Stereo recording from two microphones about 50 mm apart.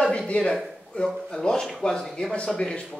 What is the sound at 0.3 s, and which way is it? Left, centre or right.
A man's voice, centre.